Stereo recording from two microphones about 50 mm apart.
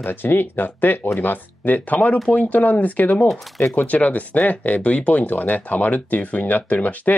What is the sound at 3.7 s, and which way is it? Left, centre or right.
Speech, left.